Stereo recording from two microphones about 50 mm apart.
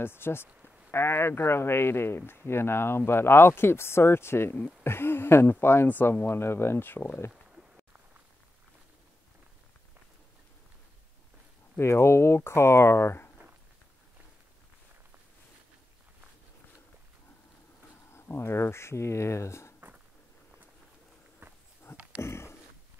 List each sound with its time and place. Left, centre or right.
0.0 s speech: left
11.8 s speech: left
18.1 s speech: left
21.9 s a sound: left